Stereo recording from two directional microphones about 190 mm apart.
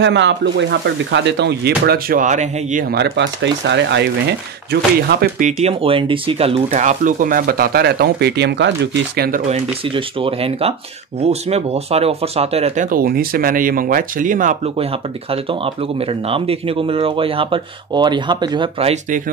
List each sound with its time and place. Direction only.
0.0 s speech: 70° right (ahead or behind)
5.6 s speech: 30° right (ahead or behind); by 9.4 s 55° right (ahead or behind)
9.5 s speech: 30° right (ahead or behind)